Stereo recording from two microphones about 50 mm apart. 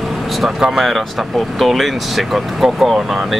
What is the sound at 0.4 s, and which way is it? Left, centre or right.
Speech, centre.